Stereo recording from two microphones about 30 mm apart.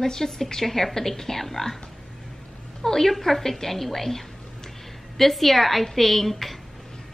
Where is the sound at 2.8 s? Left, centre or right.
Centre.